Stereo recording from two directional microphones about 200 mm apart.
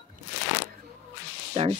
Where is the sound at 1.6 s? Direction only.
30° right (ahead or behind).